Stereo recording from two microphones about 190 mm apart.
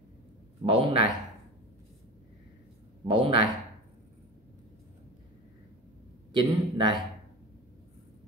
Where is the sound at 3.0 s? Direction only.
25° right (ahead or behind).